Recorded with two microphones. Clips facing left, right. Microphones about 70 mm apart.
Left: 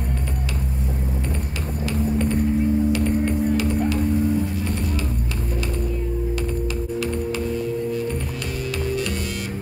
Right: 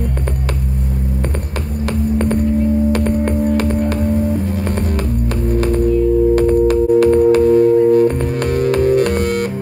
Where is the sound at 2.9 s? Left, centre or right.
Right.